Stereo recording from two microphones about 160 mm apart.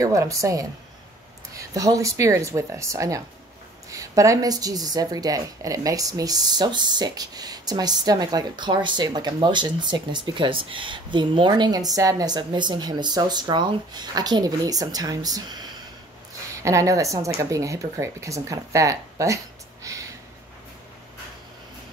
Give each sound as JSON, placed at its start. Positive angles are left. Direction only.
{"t": 0.0, "sound": "a woman's voice", "side_deg": -20}